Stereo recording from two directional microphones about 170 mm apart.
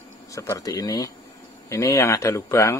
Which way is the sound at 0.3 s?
20° left (ahead or behind).